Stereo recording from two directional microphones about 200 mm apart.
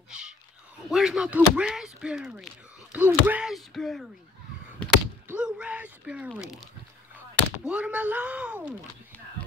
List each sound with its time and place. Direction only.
0.8 s speech: 5° right (ahead or behind)
4.7 s a sound: 5° left (ahead or behind)
5.4 s speech: 5° right (ahead or behind)